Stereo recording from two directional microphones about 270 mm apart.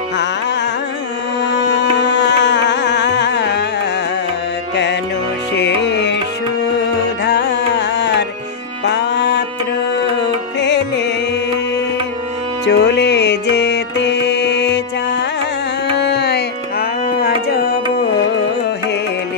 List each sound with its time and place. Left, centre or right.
1.5 s music: left
5.5 s music: left
7.2 s music: left
10.6 s music: left
12.6 s music: left